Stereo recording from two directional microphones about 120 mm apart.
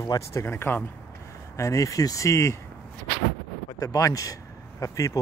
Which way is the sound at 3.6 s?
30° left (ahead or behind).